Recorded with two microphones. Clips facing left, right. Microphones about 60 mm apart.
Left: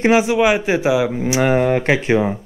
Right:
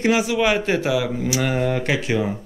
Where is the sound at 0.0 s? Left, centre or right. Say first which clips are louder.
Left 5 dB; left.